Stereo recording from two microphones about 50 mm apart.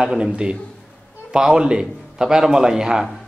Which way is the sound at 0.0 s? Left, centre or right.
Centre.